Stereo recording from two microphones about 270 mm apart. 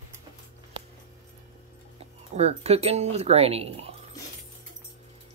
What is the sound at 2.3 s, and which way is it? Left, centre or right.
Speech, right.